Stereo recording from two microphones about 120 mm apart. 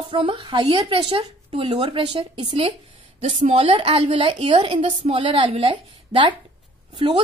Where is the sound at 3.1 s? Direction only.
60° right (ahead or behind).